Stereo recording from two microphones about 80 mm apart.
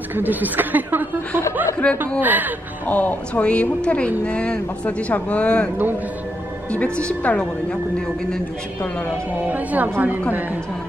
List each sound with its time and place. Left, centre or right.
0.1 s speech: right
1.8 s speech: centre
2.1 s speech: right
2.9 s speech: centre
6.7 s speech: centre
9.5 s speech: right